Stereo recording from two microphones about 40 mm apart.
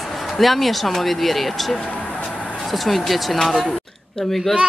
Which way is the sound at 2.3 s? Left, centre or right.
Left.